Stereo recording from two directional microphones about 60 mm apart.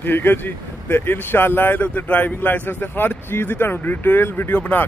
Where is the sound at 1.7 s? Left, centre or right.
Left.